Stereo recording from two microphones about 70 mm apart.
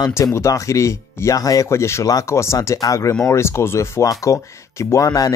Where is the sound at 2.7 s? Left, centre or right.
Left.